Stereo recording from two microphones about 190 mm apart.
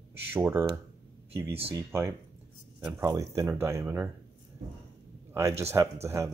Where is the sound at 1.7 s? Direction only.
15° right (ahead or behind).